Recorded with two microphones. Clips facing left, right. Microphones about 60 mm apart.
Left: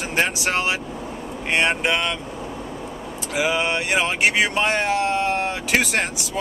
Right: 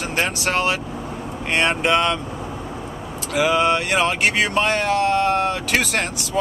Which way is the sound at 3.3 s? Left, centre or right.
Centre.